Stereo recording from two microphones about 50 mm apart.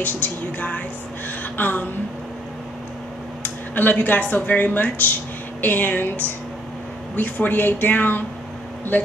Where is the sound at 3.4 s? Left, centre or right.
Left.